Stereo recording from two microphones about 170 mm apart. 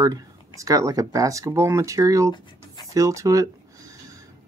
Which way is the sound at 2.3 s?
25° left (ahead or behind).